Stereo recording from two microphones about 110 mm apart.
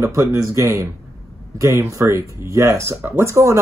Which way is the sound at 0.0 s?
30° right (ahead or behind).